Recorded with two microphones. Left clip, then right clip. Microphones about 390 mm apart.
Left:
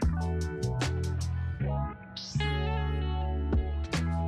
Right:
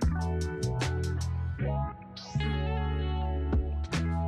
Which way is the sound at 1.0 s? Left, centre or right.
Right.